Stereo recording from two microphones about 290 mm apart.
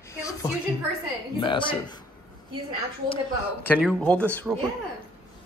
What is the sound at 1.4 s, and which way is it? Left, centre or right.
Speech, centre.